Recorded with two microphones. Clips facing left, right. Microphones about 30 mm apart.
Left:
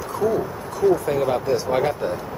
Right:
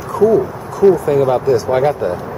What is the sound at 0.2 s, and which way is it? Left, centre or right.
Speech, right.